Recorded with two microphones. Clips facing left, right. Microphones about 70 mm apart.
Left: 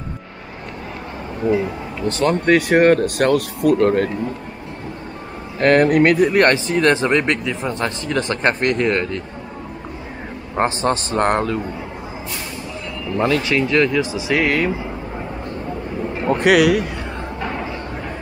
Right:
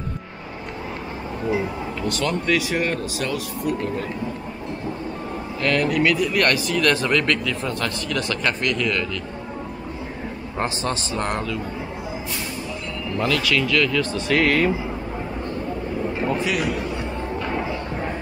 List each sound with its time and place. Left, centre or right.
1.5 s speech: centre
2.0 s speech: left
5.6 s speech: left
10.5 s speech: left
13.1 s speech: left
14.1 s speech: centre
16.3 s speech: left